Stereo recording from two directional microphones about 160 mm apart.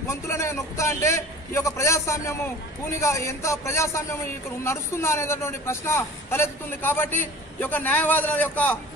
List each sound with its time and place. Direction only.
0.1 s a man's voice: 20° left (ahead or behind)